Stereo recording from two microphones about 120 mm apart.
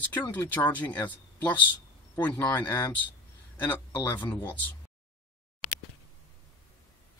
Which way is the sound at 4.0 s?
20° left (ahead or behind).